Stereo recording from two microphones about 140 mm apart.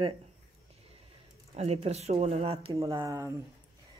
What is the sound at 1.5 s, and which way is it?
Speech, 50° right (ahead or behind).